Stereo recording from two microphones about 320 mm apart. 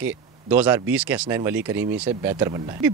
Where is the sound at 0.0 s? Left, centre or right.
Centre.